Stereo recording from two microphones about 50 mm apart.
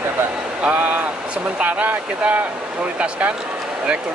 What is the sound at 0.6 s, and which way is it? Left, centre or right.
Speech, right.